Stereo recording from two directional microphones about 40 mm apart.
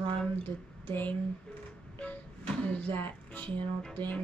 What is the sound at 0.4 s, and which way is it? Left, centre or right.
Speech, left.